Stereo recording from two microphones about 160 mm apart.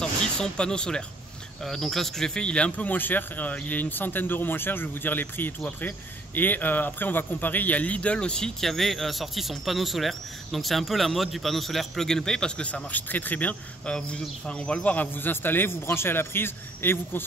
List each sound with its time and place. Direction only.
0.0 s speech: 5° left (ahead or behind)